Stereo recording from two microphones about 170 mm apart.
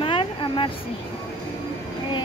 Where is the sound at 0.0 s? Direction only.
30° left (ahead or behind).